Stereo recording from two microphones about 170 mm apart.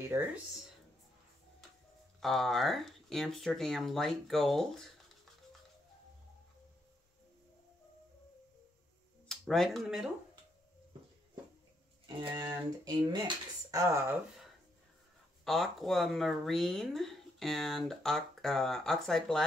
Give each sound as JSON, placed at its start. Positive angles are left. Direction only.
{"t": 0.0, "sound": "speech", "side_deg": -15}
{"t": 2.1, "sound": "speech", "side_deg": 0}
{"t": 9.3, "sound": "speech", "side_deg": 0}
{"t": 12.2, "sound": "speech", "side_deg": -25}
{"t": 15.4, "sound": "speech", "side_deg": 0}